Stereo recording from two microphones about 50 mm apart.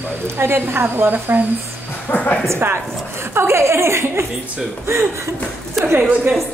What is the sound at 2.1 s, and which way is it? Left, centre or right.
Speech, left.